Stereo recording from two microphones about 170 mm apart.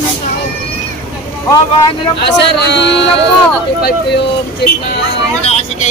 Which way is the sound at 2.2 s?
85° left.